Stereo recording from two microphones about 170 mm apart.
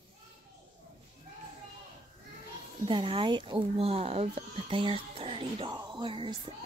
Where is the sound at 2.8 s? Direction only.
30° right (ahead or behind).